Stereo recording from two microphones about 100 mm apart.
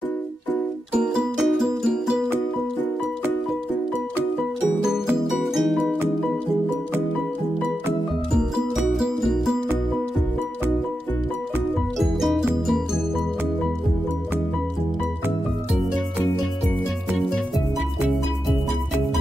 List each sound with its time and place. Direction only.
1.0 s music: 5° right (ahead or behind)
4.8 s music: 5° right (ahead or behind)
8.5 s music: centre (ahead or behind)
12.0 s music: centre (ahead or behind)